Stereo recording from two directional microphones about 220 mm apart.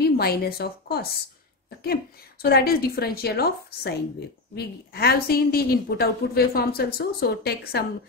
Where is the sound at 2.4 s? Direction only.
45° left (ahead or behind).